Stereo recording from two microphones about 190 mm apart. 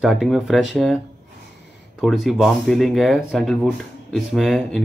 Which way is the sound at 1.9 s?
Centre (ahead or behind).